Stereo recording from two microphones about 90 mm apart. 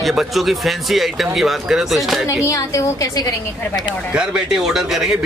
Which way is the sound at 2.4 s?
35° left (ahead or behind).